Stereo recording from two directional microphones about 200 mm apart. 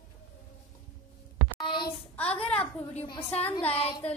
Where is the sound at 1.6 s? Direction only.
25° left (ahead or behind).